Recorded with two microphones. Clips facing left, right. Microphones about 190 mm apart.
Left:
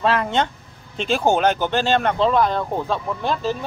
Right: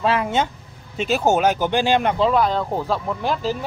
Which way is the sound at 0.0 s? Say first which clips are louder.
Even; 5° right (ahead or behind).